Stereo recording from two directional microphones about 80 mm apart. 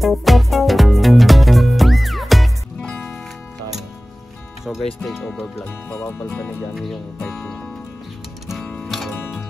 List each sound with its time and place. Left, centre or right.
0.0 s music: centre
4.6 s speech: centre
5.9 s speech: left
6.7 s speech: centre
7.2 s music: centre
8.8 s music: centre